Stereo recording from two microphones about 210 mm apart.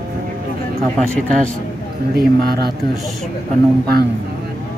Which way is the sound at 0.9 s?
5° left (ahead or behind).